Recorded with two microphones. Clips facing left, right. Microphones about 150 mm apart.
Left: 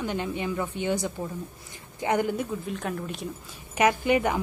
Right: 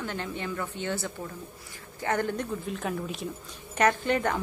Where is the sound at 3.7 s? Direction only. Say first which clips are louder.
Left 2 dB; 10° left (ahead or behind).